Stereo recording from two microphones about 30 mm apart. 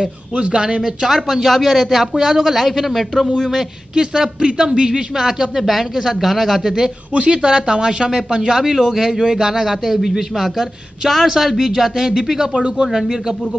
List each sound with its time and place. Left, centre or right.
0.4 s a man's voice: right
1.1 s speech: centre
2.1 s speech: centre
3.9 s speech: right
5.6 s speech: centre
7.2 s speech: right